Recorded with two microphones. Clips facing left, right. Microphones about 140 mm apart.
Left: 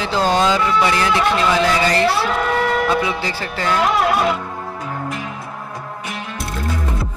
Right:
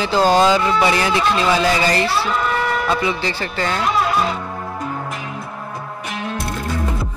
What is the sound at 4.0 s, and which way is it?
Music, 65° left (ahead or behind).